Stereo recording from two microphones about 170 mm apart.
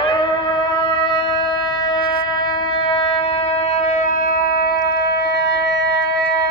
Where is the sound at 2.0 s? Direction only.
60° left (ahead or behind).